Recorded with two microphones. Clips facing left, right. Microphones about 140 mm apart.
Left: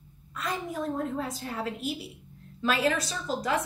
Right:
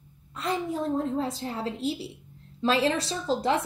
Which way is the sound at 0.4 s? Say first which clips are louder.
Right 4 dB; 25° right (ahead or behind).